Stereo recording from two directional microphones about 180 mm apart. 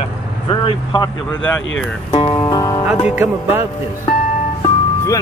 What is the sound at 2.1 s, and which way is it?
Speech, 25° left (ahead or behind).